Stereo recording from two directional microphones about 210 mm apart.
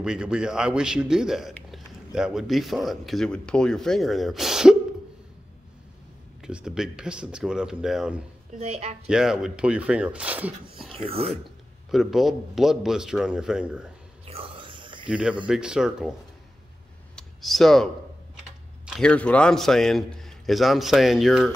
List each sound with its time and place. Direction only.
0.0 s a man's voice: 5° right (ahead or behind)
6.4 s a man's voice: 5° right (ahead or behind)
8.5 s speech: 30° right (ahead or behind)
9.1 s a man's voice: centre (ahead or behind)
10.9 s speech: 25° right (ahead or behind)
11.9 s a man's voice: centre (ahead or behind)
14.2 s whispering: 25° right (ahead or behind)
15.0 s a man's voice: 5° right (ahead or behind)
17.1 s clicking: centre (ahead or behind)
18.9 s a man's voice: 5° left (ahead or behind)